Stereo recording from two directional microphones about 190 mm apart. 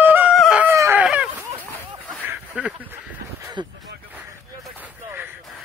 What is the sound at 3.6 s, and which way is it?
Speech, 25° right (ahead or behind).